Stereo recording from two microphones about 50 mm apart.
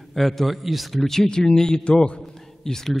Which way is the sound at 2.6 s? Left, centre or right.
Centre.